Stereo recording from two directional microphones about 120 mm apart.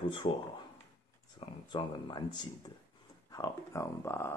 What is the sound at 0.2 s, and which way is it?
Speech, 40° left (ahead or behind).